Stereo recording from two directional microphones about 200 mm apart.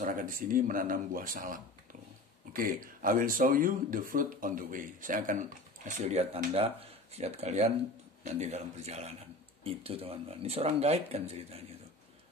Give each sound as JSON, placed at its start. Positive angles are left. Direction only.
{"t": 0.0, "sound": "speech", "side_deg": -45}